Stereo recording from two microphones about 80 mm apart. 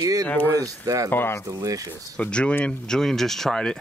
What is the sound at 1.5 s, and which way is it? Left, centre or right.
Speech, right.